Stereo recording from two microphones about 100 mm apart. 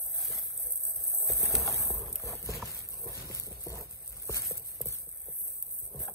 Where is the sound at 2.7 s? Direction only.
35° left (ahead or behind).